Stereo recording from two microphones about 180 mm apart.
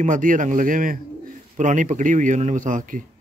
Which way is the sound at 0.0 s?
45° right (ahead or behind).